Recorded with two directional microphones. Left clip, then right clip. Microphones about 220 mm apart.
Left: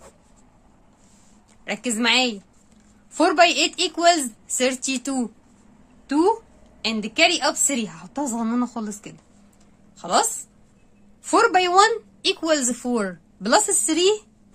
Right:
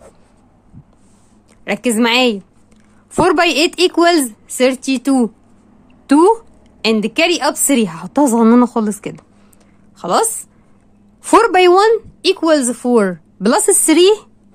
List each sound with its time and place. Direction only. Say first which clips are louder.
1.6 s a woman's voice: right 9 dB; 35° right (ahead or behind)
6.0 s a woman's voice: right 9 dB; 45° right (ahead or behind)
8.2 s a woman's voice: right 14 dB; 40° right (ahead or behind)
9.9 s a woman's voice: right 5 dB; 35° right (ahead or behind)
11.2 s a woman's voice: right 8 dB; 35° right (ahead or behind)
13.8 s a woman's voice: right 10 dB; 40° right (ahead or behind)